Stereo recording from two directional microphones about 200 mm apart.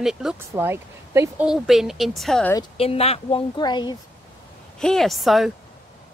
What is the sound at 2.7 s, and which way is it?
A woman's voice, 30° left (ahead or behind).